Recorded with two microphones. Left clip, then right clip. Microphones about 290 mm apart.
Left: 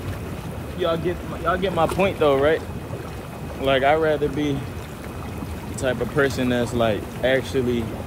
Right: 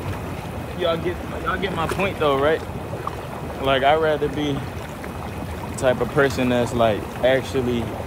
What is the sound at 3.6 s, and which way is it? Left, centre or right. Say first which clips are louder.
Speech: right 1 dB; centre.